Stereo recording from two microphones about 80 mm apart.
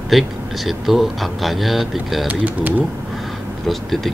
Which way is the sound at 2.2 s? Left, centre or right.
Right.